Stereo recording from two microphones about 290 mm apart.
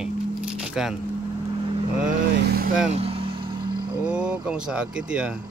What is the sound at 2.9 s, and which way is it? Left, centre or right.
Vehicle, right.